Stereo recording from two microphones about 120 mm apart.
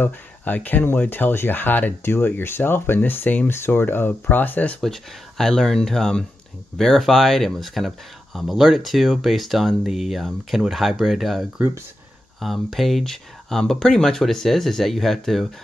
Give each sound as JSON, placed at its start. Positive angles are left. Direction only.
{"t": 0.0, "sound": "speech", "side_deg": 15}